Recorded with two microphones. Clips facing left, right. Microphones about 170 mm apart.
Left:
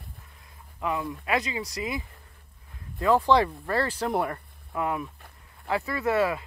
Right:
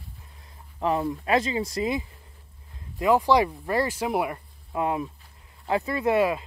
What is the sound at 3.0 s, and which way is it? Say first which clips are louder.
Speech: right 1 dB; 10° right (ahead or behind).